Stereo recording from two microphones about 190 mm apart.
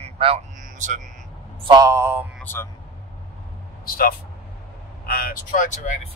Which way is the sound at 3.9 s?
50° left (ahead or behind).